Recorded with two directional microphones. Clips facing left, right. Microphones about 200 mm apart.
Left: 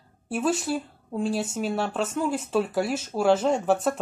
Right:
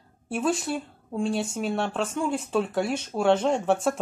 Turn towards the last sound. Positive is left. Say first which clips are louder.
# left 1 dB
turn(degrees=0)  # may be behind; listen again after turning